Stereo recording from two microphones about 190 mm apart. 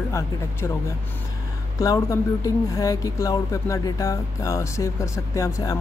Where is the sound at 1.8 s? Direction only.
20° left (ahead or behind).